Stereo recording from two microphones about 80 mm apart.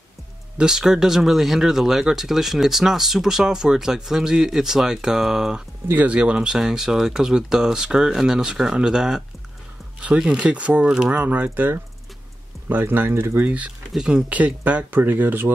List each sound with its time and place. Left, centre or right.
0.6 s speech: centre
5.9 s speech: centre
13.4 s speech: centre
13.9 s speech: centre
14.3 s speech: centre